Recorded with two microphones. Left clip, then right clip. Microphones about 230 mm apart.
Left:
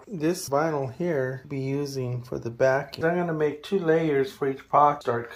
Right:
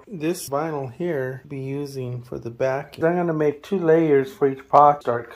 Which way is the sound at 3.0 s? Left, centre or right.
Right.